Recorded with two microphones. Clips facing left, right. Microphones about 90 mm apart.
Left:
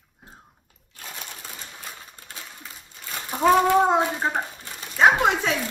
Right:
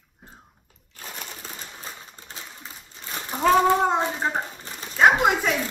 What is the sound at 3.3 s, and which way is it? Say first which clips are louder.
Speech: left 1 dB; 5° left (ahead or behind).